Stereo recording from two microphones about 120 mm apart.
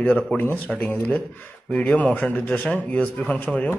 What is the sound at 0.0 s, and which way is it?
A man's voice, 15° left (ahead or behind).